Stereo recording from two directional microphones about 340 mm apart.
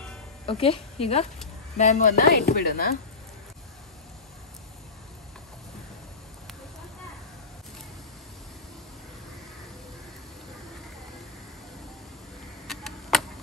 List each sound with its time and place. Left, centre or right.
0.5 s a woman's voice: centre
12.6 s tick-tock: centre